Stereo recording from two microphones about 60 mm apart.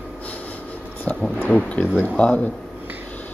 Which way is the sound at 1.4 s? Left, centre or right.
Left.